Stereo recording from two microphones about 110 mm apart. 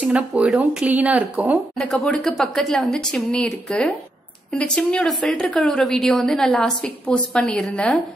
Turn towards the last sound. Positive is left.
turn(degrees=10)  # may be behind; listen again after turning